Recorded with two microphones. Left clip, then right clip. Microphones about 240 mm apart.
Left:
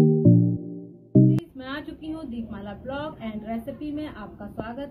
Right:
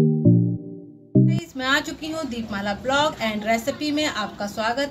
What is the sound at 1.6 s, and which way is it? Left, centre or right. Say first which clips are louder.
A woman's voice: right 13 dB; right.